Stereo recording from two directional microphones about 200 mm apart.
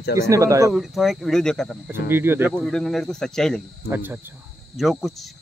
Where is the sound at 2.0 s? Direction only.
10° right (ahead or behind).